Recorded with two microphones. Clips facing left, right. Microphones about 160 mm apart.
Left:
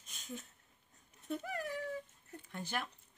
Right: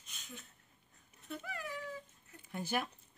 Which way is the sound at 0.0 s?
45° left (ahead or behind).